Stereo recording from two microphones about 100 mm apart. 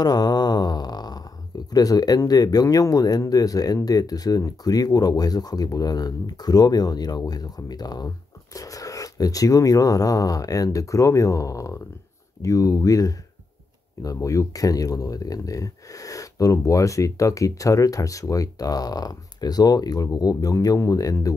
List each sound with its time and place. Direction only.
0.0 s speech: 45° left (ahead or behind)